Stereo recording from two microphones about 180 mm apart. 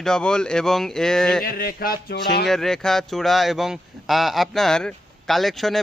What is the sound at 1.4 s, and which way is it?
Speech, 55° left (ahead or behind).